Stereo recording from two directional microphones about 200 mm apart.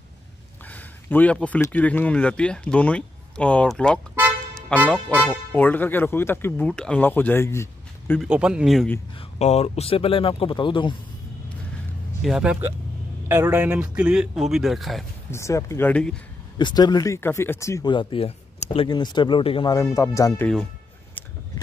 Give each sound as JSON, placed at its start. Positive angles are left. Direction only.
{"t": 0.7, "sound": "speech", "side_deg": 10}
{"t": 8.2, "sound": "speech", "side_deg": -5}
{"t": 9.4, "sound": "speech", "side_deg": 30}
{"t": 12.2, "sound": "speech", "side_deg": -5}
{"t": 15.3, "sound": "speech", "side_deg": 15}
{"t": 16.5, "sound": "speech", "side_deg": 20}